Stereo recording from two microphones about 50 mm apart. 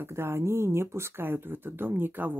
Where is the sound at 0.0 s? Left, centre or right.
Right.